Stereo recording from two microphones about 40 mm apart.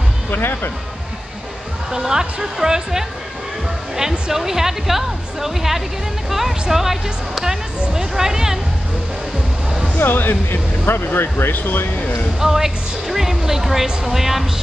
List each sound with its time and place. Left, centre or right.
0.3 s speech: left
1.9 s speech: centre
9.9 s speech: left
11.1 s speech: left
12.4 s speech: centre